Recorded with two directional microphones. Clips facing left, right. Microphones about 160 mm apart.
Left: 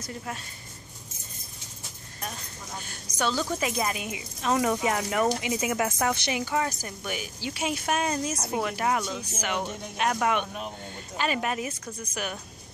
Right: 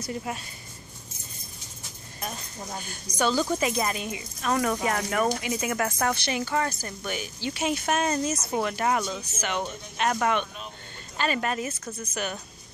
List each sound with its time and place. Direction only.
2.8 s a woman's voice: centre (ahead or behind); by 5.9 s 15° left (ahead or behind)
5.9 s a woman's voice: 5° left (ahead or behind)